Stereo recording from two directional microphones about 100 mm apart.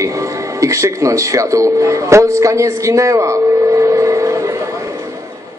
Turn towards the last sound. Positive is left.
turn(degrees=-30)  # may be behind; listen again after turning